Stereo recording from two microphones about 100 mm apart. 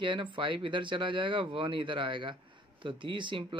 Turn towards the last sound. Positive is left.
turn(degrees=-55)  # may be behind; listen again after turning